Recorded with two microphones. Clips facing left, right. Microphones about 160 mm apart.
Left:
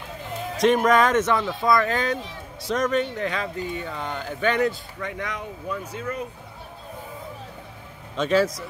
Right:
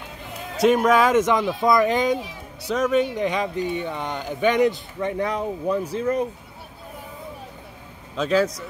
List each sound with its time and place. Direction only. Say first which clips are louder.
0.6 s speech: right 1 dB; 5° right (ahead or behind)
5.0 s speech: right 8 dB; 30° right (ahead or behind)
8.2 s speech: even; centre (ahead or behind)